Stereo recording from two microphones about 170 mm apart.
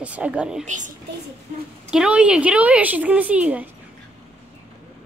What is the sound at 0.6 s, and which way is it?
Speech, 45° right (ahead or behind).